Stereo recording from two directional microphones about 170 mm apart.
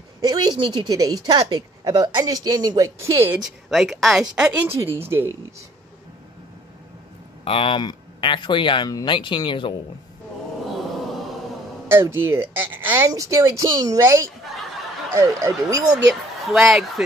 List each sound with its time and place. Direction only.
0.2 s a woman's voice: 25° right (ahead or behind)
3.7 s speech: centre (ahead or behind)
7.4 s speech: 30° left (ahead or behind)
11.9 s speech: 15° right (ahead or behind)
15.1 s speech: 20° right (ahead or behind)
16.1 s speech: centre (ahead or behind)